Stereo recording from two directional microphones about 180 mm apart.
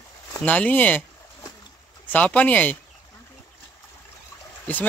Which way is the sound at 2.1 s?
10° left (ahead or behind).